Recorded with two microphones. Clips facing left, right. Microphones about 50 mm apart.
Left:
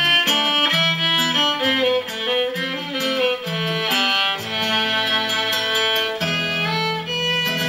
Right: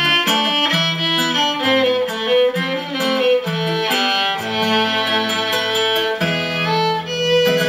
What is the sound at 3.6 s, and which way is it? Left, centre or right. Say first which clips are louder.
Music: right 3 dB; centre.